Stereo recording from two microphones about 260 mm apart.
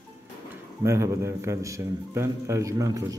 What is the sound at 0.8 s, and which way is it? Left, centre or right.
A man's voice, centre.